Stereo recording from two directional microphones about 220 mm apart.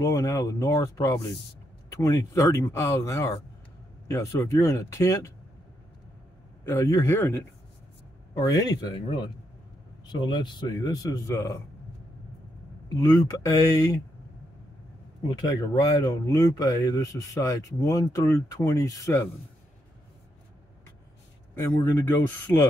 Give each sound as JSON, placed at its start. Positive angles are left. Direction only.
{"t": 0.0, "sound": "speech", "side_deg": 15}
{"t": 6.6, "sound": "speech", "side_deg": 15}
{"t": 13.0, "sound": "speech", "side_deg": 15}
{"t": 15.3, "sound": "speech", "side_deg": 15}
{"t": 21.5, "sound": "speech", "side_deg": 10}